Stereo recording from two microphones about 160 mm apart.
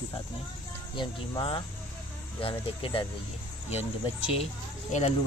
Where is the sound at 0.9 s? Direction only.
30° left (ahead or behind).